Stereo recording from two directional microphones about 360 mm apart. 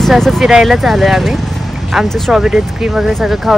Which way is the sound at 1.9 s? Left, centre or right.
Centre.